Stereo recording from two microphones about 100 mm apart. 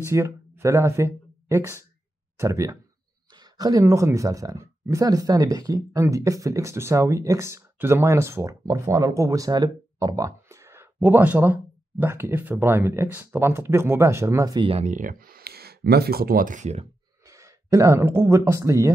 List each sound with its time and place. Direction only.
0.0 s speech: 25° right (ahead or behind)
3.3 s speech: 40° right (ahead or behind)
14.6 s speech: 70° right (ahead or behind)
17.3 s speech: 35° right (ahead or behind)